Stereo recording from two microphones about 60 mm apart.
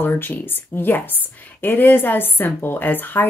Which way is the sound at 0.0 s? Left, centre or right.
Left.